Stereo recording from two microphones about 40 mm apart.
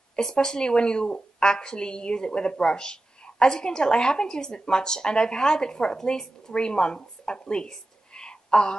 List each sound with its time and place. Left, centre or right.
0.1 s a woman's voice: centre